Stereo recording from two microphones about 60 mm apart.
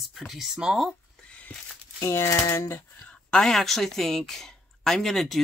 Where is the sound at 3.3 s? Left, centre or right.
Centre.